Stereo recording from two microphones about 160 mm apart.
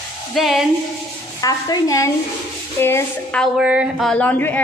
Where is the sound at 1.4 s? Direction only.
20° left (ahead or behind).